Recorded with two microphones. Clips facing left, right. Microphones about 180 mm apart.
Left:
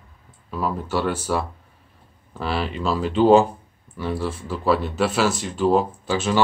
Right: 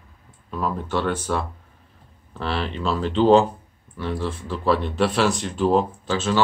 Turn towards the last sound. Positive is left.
turn(degrees=10)  # may be behind; listen again after turning